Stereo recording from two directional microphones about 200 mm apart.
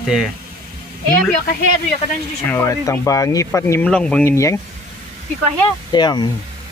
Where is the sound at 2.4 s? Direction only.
10° left (ahead or behind).